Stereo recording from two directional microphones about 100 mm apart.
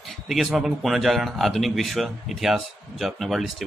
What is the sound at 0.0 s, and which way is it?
Speech, centre (ahead or behind).